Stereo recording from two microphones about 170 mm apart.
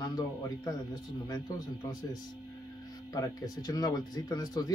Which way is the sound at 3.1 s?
20° left (ahead or behind).